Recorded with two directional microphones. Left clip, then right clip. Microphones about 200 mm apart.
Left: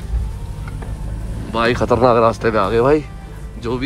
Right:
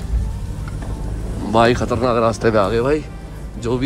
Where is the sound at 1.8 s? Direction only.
10° right (ahead or behind).